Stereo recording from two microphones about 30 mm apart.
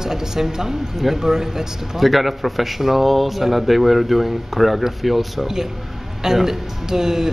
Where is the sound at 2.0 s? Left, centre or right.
Centre.